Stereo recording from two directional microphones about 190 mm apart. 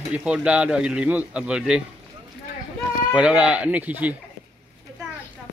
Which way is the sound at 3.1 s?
5° right (ahead or behind).